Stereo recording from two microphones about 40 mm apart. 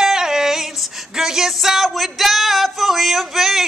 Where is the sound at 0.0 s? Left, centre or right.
Centre.